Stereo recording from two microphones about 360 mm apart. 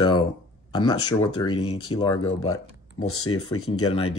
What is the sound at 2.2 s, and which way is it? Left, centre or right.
Speech, left.